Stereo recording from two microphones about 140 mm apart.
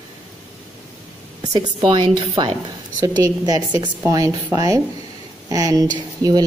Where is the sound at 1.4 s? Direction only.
30° right (ahead or behind).